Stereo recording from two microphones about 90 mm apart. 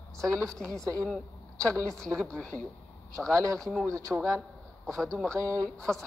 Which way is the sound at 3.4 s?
35° right (ahead or behind).